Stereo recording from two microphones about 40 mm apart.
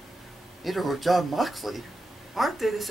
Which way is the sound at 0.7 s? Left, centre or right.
Centre.